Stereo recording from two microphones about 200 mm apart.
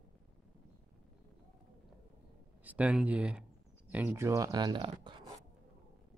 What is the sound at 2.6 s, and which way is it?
Speech, 5° right (ahead or behind).